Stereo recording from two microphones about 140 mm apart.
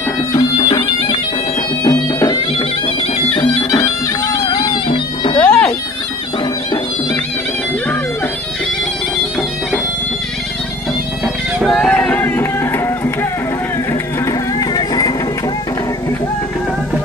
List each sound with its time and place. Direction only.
0.3 s bagpipes: 25° left (ahead or behind)
1.9 s music: 25° left (ahead or behind)
3.3 s bagpipes: 30° left (ahead or behind)
5.4 s bagpipes: 10° left (ahead or behind)
11.6 s a sound: centre (ahead or behind)
14.2 s music: 25° left (ahead or behind)